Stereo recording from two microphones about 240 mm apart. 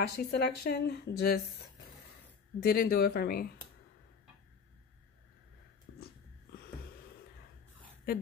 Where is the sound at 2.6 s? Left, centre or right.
Left.